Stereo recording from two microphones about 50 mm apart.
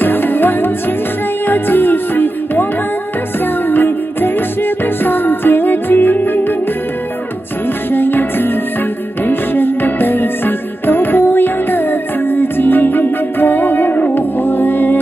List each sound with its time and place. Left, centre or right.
0.0 s music: left
3.6 s music: left
7.9 s music: left